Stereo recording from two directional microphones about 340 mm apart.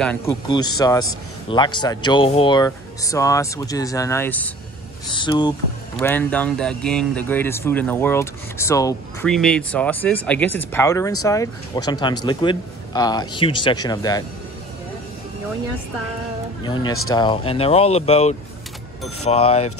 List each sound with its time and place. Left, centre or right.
0.0 s speech: centre
16.6 s speech: centre